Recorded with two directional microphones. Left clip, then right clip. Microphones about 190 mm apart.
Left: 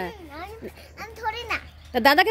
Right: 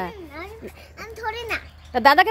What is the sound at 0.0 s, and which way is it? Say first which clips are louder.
Speech: right 2 dB; 15° left (ahead or behind).